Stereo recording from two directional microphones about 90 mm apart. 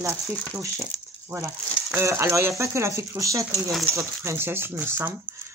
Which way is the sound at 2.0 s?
30° right (ahead or behind).